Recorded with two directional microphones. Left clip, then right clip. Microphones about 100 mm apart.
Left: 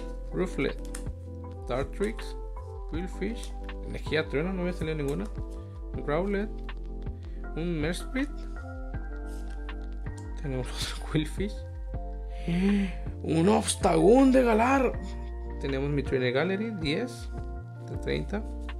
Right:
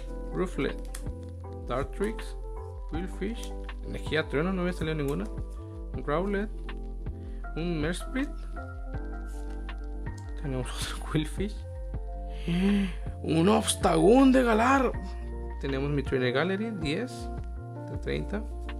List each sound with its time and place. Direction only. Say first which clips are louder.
0.3 s speech: left 1 dB; 10° right (ahead or behind)
4.5 s speech: right 1 dB; 50° right (ahead or behind)
4.7 s speech: even; 30° right (ahead or behind)
5.9 s speech: even; 10° right (ahead or behind)
7.5 s speech: even; 20° right (ahead or behind)
7.8 s speech: left 2 dB; 10° right (ahead or behind)
10.4 s speech: left 1 dB; 20° right (ahead or behind)